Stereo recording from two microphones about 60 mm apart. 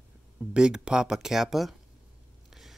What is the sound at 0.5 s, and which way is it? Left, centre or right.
Speech, centre.